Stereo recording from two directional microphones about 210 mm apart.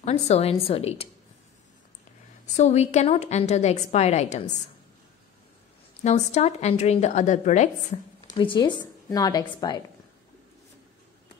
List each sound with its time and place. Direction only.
0.0 s a woman's voice: 30° left (ahead or behind)
2.5 s a woman's voice: 30° left (ahead or behind)
6.0 s a woman's voice: 30° left (ahead or behind)
8.4 s a woman's voice: 20° left (ahead or behind)